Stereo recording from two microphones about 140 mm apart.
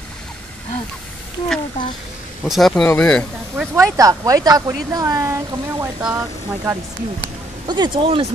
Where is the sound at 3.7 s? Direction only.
25° right (ahead or behind).